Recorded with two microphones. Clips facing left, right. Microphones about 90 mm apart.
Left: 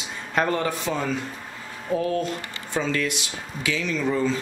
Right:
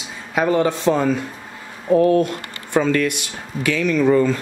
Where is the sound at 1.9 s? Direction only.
60° right (ahead or behind).